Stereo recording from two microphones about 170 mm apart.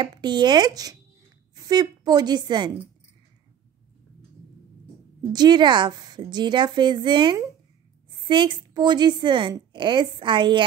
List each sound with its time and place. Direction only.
0.0 s a woman's voice: 25° right (ahead or behind)
5.3 s a woman's voice: 25° right (ahead or behind)